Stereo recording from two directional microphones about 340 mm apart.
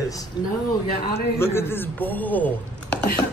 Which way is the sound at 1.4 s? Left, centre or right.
Centre.